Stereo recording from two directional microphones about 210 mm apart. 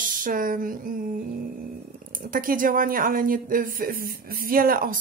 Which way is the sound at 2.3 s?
40° right (ahead or behind).